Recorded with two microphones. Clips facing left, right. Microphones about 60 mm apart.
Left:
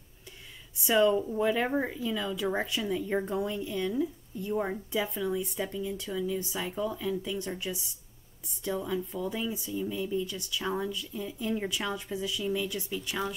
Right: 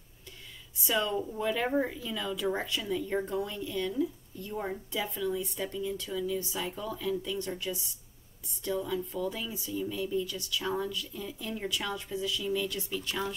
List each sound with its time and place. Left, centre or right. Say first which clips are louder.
0.8 s speech: left 6 dB; centre
2.6 s speech: left 2 dB; centre
5.5 s speech: left 1 dB; centre